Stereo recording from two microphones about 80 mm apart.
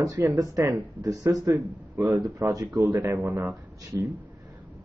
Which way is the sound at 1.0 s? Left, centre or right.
Right.